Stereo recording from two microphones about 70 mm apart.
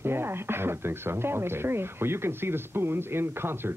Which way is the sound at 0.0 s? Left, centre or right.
Right.